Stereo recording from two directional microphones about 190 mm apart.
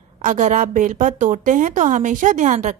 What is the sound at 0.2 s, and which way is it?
A woman's voice, 40° right (ahead or behind).